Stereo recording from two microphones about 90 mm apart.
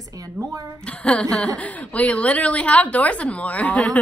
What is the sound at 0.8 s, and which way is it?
A woman's voice, 15° left (ahead or behind).